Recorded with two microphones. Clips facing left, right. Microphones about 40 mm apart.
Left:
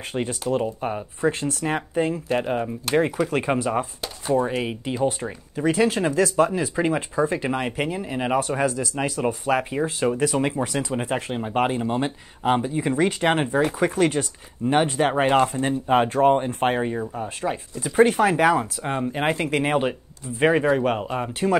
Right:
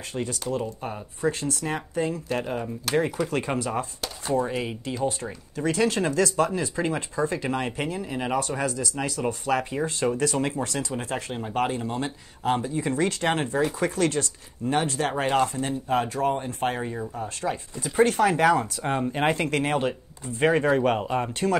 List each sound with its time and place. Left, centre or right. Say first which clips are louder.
0.1 s speech: left 4 dB; left
15.9 s speech: left 7 dB; left
17.0 s speech: left 2 dB; centre
19.6 s speech: left 3 dB; centre